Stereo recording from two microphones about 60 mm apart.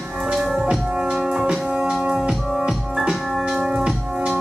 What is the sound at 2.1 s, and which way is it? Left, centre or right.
Music, centre.